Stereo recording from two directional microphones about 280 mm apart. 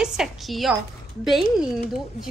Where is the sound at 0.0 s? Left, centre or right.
Centre.